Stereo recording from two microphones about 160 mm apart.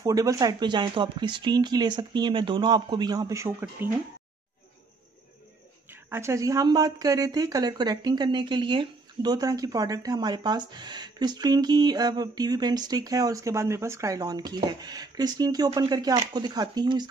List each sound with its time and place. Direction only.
0.0 s speech: 20° right (ahead or behind)
5.9 s speech: 15° right (ahead or behind)